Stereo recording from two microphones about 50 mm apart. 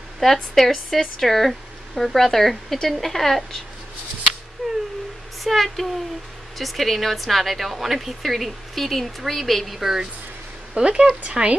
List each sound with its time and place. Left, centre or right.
0.2 s speech: centre
5.4 s speech: centre; by 11.5 s right